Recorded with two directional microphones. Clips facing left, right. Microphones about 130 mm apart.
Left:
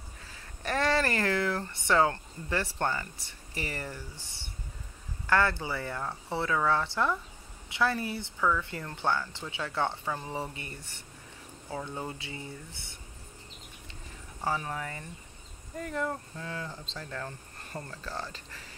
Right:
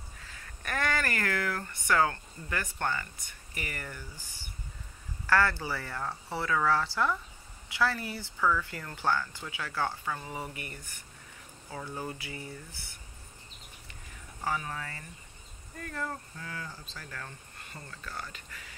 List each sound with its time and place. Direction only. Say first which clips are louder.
0.6 s speech: left 4 dB; 25° left (ahead or behind)
5.2 s speech: even; 20° left (ahead or behind)
14.4 s speech: left 2 dB; 25° left (ahead or behind)